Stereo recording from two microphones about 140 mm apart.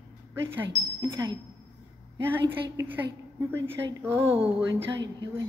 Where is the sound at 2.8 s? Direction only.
20° right (ahead or behind).